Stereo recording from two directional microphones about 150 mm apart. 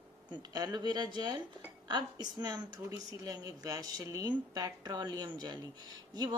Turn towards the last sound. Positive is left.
turn(degrees=-25)  # may be behind; listen again after turning